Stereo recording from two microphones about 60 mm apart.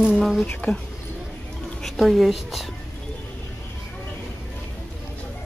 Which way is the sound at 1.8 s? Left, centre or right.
Centre.